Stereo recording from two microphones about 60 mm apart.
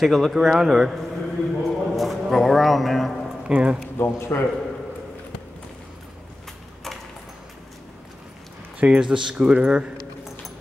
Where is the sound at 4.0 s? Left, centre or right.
Left.